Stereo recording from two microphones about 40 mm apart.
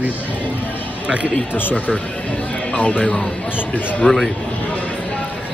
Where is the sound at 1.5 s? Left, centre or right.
Left.